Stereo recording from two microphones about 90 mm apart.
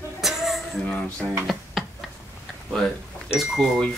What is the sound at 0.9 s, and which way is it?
Speech, 15° left (ahead or behind).